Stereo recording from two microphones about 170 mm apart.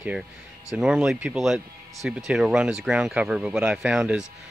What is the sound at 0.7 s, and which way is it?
Speech, 5° right (ahead or behind).